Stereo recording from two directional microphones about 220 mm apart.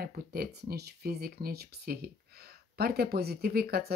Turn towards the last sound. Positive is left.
turn(degrees=-45)  # may be behind; listen again after turning